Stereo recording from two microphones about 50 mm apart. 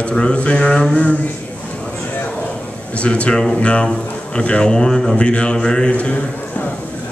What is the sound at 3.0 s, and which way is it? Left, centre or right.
Speech, left.